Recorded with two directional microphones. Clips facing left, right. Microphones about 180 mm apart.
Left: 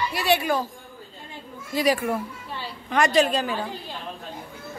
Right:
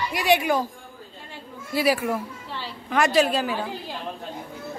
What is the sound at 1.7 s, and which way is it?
A woman's voice, 10° right (ahead or behind).